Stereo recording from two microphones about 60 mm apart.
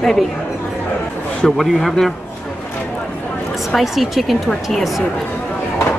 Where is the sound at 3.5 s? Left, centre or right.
Centre.